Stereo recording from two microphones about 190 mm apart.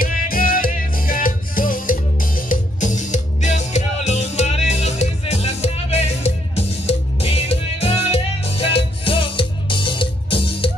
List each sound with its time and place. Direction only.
0.0 s music: 50° left (ahead or behind); by 10.7 s 25° left (ahead or behind)